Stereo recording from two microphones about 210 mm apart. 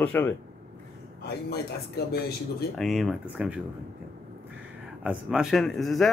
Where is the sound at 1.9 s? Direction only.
50° left (ahead or behind).